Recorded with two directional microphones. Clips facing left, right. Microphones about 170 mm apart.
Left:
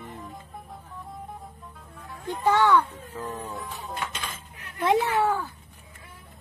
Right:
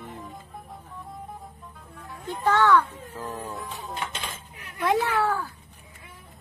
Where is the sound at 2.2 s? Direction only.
15° left (ahead or behind).